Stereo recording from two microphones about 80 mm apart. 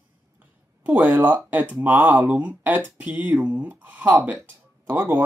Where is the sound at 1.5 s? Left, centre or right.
Right.